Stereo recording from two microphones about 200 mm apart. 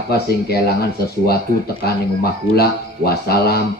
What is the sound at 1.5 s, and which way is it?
Speech, 45° right (ahead or behind).